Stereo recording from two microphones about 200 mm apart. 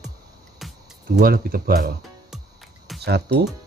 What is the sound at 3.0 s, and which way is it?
Speech, 55° right (ahead or behind).